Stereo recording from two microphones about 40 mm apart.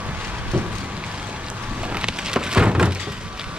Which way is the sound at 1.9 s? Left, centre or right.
Centre.